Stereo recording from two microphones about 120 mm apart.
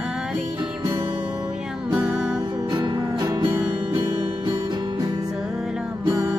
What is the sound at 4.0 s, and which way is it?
Music, 30° right (ahead or behind).